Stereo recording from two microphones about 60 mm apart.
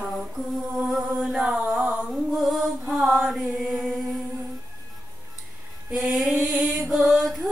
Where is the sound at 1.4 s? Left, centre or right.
Centre.